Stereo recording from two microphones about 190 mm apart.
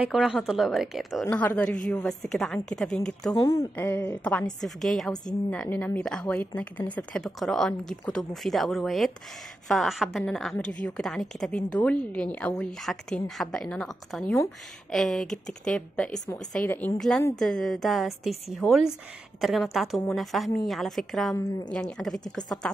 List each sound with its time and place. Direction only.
0.0 s a woman's voice: centre (ahead or behind)
1.2 s a woman's voice: 10° left (ahead or behind)
3.3 s a woman's voice: 20° left (ahead or behind); by 21.4 s centre (ahead or behind)
21.4 s a woman's voice: 10° left (ahead or behind)